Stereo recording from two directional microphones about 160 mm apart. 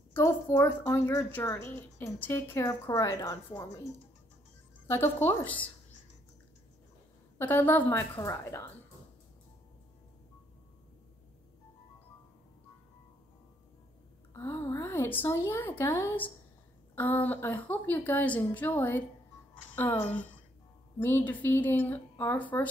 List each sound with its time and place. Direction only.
0.1 s a woman's voice: 15° left (ahead or behind)
4.8 s a woman's voice: 15° left (ahead or behind)
7.3 s a woman's voice: 10° left (ahead or behind)
14.3 s a woman's voice: 15° left (ahead or behind)